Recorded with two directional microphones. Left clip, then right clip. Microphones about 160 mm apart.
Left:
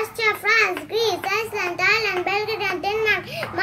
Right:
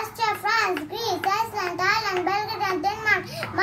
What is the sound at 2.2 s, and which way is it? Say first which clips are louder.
Children playing: left 2 dB; 10° right (ahead or behind).